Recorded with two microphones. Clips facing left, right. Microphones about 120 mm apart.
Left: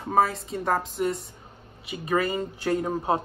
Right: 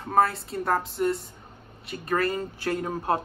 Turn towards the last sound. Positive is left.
turn(degrees=10)  # may be behind; listen again after turning